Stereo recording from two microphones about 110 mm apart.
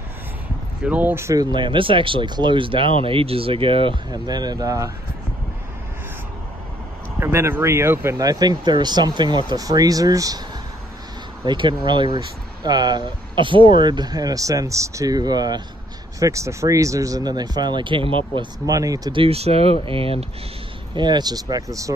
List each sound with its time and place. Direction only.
0.8 s speech: 15° right (ahead or behind); by 4.0 s 55° right (ahead or behind)
4.1 s speech: 40° right (ahead or behind)
7.2 s speech: 20° right (ahead or behind)
11.4 s speech: 45° right (ahead or behind)
16.2 s speech: 30° right (ahead or behind); by 18.5 s 50° right (ahead or behind)
18.7 s speech: 35° right (ahead or behind)
19.1 s speech: 65° right (ahead or behind)
20.9 s speech: 40° right (ahead or behind)